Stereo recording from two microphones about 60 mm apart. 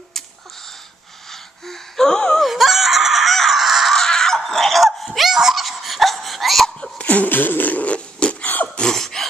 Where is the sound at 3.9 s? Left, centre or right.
Centre.